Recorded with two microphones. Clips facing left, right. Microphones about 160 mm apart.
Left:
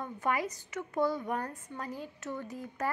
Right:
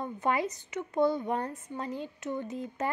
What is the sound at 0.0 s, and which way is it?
A woman's voice, 25° right (ahead or behind).